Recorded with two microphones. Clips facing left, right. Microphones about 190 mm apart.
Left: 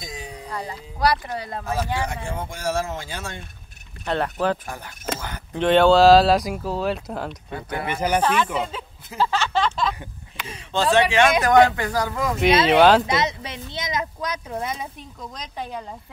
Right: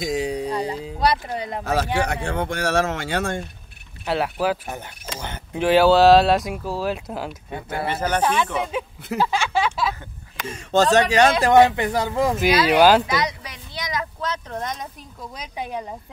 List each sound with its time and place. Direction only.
0.0 s music: 80° right
0.9 s a man's voice: 25° right (ahead or behind)
1.6 s speech: 75° right (ahead or behind)
4.0 s speech: 5° right (ahead or behind)
4.6 s a man's voice: 20° right (ahead or behind)
5.5 s speech: 5° right (ahead or behind)
7.7 s speech: 15° left (ahead or behind)
9.2 s a sound: 10° right (ahead or behind)
10.3 s speech: 45° right (ahead or behind)
11.4 s a man's voice: 25° right (ahead or behind)
12.4 s speech: 25° left (ahead or behind)
12.7 s speech: centre (ahead or behind)
13.0 s speech: 25° left (ahead or behind); by 14.9 s 10° left (ahead or behind)
15.3 s speech: 10° right (ahead or behind)